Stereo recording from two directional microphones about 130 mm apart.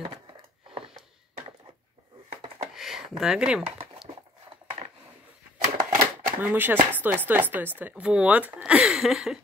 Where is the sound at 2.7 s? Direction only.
5° right (ahead or behind).